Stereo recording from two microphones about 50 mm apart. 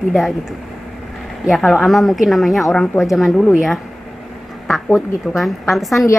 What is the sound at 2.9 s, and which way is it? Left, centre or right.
Speech, left.